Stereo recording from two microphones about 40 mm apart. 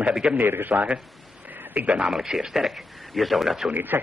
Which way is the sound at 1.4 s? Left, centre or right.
Right.